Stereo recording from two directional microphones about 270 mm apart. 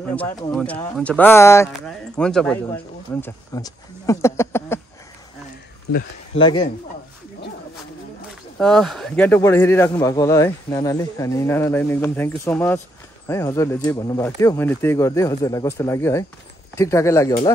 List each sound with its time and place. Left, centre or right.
0.1 s speech: centre
5.9 s speech: left
6.3 s speech: centre
8.5 s speech: centre